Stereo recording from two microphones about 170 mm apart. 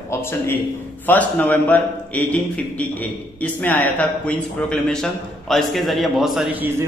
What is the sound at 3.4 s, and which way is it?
A man's voice, 10° left (ahead or behind).